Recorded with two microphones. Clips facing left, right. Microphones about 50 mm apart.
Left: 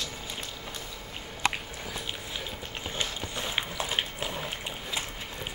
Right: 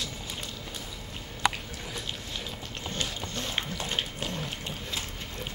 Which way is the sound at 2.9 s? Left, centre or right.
Centre.